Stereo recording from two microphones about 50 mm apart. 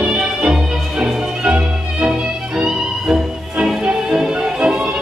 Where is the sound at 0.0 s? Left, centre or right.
Centre.